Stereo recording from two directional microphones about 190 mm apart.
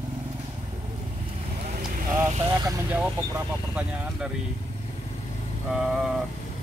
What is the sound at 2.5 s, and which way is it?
Speech, 15° right (ahead or behind).